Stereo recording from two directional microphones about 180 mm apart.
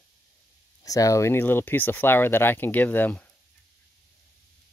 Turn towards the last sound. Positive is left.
turn(degrees=10)  # may be behind; listen again after turning